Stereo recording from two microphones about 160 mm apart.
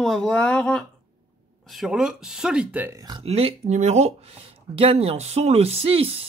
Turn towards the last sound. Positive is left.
turn(degrees=-35)  # may be behind; listen again after turning